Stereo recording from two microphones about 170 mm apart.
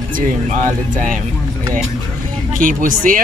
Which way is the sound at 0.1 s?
50° right (ahead or behind).